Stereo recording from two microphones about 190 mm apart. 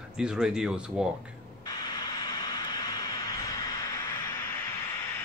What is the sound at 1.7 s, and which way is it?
Vehicle, 20° left (ahead or behind).